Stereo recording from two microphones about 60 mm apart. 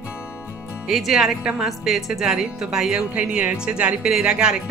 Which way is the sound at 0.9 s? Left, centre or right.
Centre.